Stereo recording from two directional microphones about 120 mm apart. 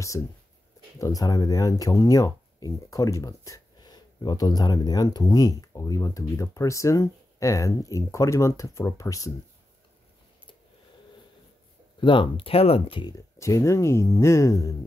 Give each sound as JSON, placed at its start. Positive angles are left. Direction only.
{"t": 0.2, "sound": "speech", "side_deg": 15}
{"t": 0.9, "sound": "speech", "side_deg": 30}
{"t": 12.0, "sound": "speech", "side_deg": 45}
{"t": 13.4, "sound": "speech", "side_deg": 25}